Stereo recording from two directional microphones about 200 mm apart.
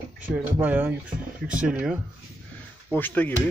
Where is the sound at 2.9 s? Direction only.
10° left (ahead or behind).